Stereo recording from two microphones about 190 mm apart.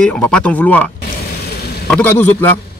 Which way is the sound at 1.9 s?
10° left (ahead or behind).